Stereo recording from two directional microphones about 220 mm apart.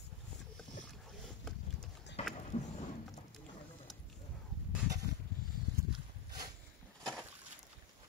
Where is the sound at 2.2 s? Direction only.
25° left (ahead or behind).